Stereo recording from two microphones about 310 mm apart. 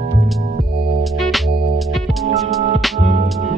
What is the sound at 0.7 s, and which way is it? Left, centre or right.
Music, right.